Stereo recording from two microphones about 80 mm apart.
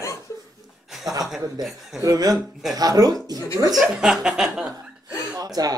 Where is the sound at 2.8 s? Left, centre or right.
Right.